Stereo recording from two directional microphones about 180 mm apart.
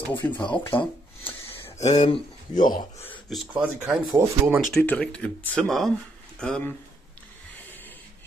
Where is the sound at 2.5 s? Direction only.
50° left (ahead or behind).